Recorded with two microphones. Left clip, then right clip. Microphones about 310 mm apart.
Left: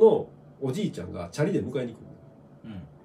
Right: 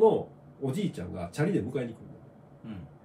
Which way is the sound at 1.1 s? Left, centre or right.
Centre.